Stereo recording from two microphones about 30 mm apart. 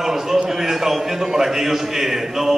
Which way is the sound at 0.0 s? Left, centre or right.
Centre.